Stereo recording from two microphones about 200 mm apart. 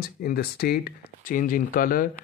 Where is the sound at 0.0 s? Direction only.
50° left (ahead or behind).